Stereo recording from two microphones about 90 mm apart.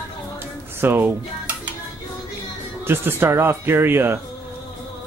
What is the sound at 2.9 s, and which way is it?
Speech, 25° right (ahead or behind).